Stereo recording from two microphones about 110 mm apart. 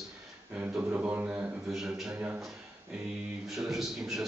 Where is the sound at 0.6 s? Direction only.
15° right (ahead or behind).